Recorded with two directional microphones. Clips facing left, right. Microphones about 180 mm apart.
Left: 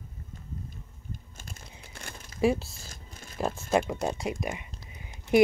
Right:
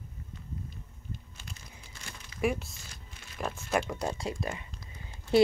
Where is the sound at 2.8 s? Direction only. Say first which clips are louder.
Left 4 dB; 45° left (ahead or behind).